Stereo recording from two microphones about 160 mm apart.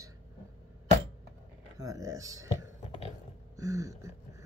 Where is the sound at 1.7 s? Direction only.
20° right (ahead or behind).